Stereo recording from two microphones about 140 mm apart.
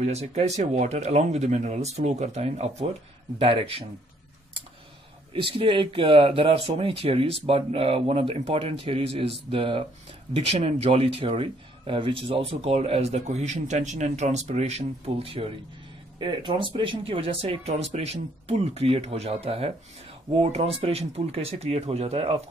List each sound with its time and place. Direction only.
0.0 s a man's voice: 50° right (ahead or behind)
5.6 s a man's voice: 40° right (ahead or behind)
16.2 s a man's voice: 35° right (ahead or behind)